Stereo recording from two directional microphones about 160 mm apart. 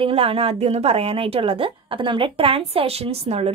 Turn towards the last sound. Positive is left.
turn(degrees=-40)  # may be behind; listen again after turning